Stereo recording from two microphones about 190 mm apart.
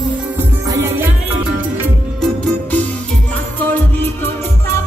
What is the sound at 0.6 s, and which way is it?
Music, 15° right (ahead or behind).